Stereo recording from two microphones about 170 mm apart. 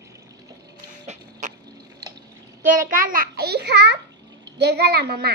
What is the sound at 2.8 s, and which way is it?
A child's voice, 55° right (ahead or behind).